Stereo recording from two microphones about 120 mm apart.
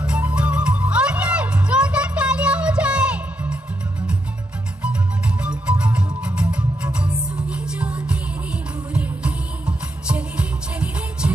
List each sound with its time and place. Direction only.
0.0 s music: 10° right (ahead or behind)
4.8 s music: 10° right (ahead or behind)